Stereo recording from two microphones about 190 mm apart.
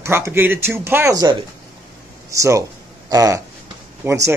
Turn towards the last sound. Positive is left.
turn(degrees=-15)  # may be behind; listen again after turning